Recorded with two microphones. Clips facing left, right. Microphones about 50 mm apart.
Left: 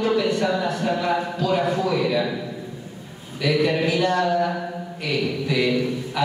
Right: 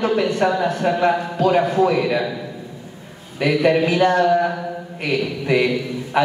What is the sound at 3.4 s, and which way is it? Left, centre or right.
A man's voice, right.